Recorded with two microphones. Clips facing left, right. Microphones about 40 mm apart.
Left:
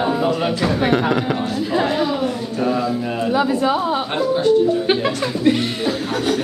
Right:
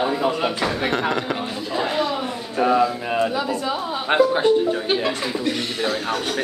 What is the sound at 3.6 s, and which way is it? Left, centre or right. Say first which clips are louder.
Speech: left 7 dB; left.